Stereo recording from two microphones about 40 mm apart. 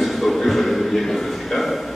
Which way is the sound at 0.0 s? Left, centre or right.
Centre.